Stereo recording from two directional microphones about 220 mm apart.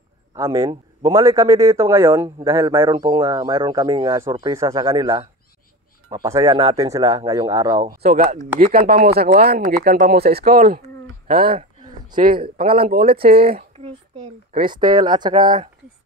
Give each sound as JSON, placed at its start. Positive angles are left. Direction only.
{"t": 0.3, "sound": "speech", "side_deg": -15}
{"t": 8.0, "sound": "speech", "side_deg": -40}
{"t": 8.8, "sound": "speech", "side_deg": -45}
{"t": 12.9, "sound": "speech", "side_deg": -40}
{"t": 13.4, "sound": "speech", "side_deg": -25}